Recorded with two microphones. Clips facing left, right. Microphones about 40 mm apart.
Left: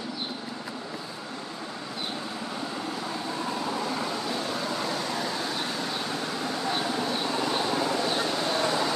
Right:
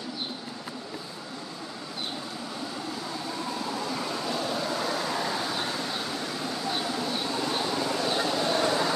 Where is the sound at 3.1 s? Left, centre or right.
Left.